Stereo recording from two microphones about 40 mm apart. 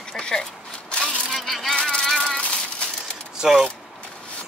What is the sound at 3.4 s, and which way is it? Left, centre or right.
Speech, centre.